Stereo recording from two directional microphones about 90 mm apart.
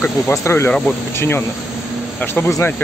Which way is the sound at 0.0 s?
30° left (ahead or behind).